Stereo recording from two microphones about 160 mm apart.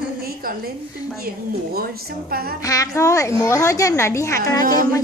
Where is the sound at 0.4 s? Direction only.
65° right (ahead or behind).